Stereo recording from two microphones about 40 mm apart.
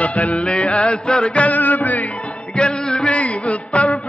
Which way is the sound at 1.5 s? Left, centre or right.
Left.